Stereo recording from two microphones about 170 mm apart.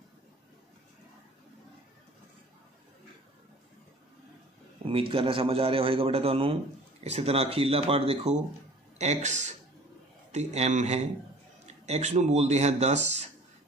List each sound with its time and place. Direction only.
4.8 s a man's voice: 30° right (ahead or behind)